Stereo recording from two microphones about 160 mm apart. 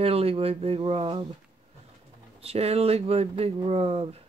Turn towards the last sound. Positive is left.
turn(degrees=-35)  # may be behind; listen again after turning